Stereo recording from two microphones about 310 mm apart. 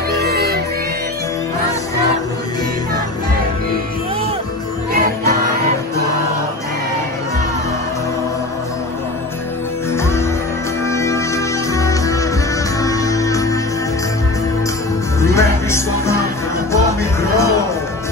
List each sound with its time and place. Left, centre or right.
0.2 s music: right
10.9 s music: centre
15.2 s music: centre